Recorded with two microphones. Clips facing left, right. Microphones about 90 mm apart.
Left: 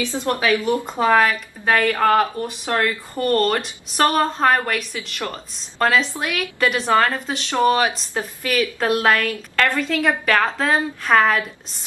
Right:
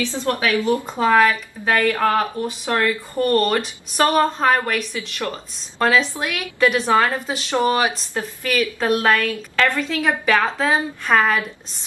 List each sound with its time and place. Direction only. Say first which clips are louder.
0.0 s a woman's voice: even; 20° left (ahead or behind)
1.6 s a woman's voice: left 1 dB; centre (ahead or behind); by 7.8 s 15° right (ahead or behind)
8.1 s a woman's voice: even; centre (ahead or behind)